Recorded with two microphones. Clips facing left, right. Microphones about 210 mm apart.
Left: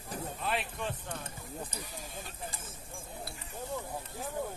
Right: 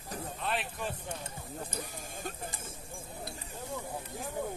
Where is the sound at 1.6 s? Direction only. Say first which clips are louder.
Right 3 dB; 50° right (ahead or behind).